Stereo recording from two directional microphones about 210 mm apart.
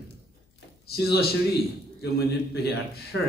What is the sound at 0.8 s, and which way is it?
A man's voice, 50° left (ahead or behind).